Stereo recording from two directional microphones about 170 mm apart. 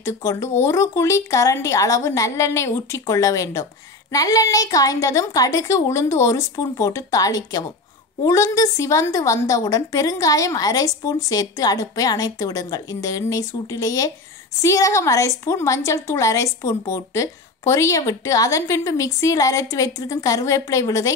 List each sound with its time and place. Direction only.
0.0 s a woman's voice: 15° left (ahead or behind)